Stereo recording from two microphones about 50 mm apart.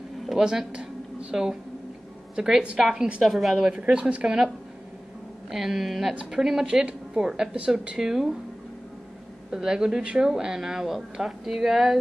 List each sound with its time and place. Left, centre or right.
0.3 s a woman's voice: centre
3.7 s speech: centre
5.5 s speech: centre
9.5 s speech: centre